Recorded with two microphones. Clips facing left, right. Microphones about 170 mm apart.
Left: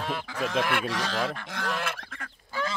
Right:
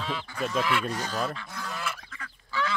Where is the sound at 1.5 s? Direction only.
80° left.